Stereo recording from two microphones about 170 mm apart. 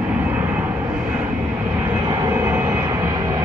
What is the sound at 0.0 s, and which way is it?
Vehicle, 10° right (ahead or behind).